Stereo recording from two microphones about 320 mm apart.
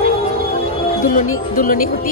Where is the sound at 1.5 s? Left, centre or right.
Left.